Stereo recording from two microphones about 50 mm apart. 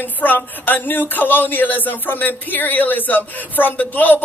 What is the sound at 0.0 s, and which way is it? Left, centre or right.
Speech, left.